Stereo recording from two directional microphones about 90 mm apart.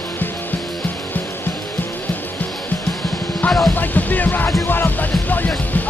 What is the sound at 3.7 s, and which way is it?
Music, 20° left (ahead or behind).